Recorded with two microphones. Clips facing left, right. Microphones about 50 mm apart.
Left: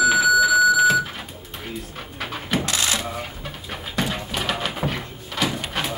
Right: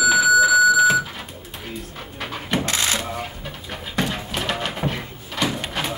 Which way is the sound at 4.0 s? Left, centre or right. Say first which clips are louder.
Right 1 dB; centre.